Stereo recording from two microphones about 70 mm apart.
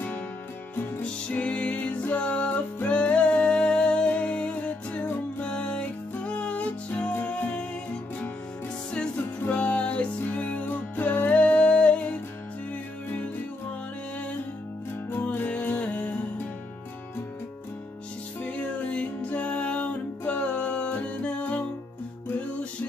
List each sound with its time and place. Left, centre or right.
1.0 s music: centre
9.1 s music: left
15.0 s music: left
18.4 s music: left